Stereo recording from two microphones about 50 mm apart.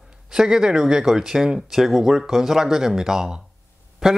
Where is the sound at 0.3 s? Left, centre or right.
Centre.